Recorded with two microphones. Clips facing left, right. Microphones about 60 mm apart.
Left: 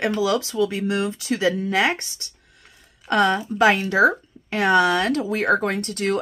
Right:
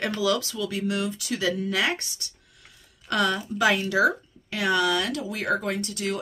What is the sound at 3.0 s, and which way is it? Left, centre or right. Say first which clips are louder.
Speech: left 6 dB; left.